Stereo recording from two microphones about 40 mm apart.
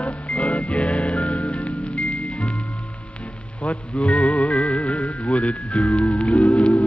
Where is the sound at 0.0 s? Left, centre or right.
Left.